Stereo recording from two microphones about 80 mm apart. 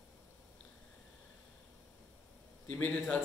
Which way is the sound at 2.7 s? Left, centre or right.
Left.